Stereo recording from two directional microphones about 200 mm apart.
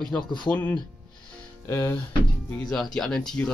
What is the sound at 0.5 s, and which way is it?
Speech, 10° left (ahead or behind).